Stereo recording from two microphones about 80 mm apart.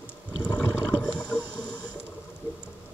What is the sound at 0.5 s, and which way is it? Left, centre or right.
Water, centre.